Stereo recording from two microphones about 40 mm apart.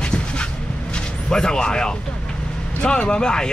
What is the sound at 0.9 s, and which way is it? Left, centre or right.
Speech, centre.